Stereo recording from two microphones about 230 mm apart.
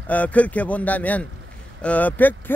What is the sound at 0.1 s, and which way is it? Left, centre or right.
Speech, centre.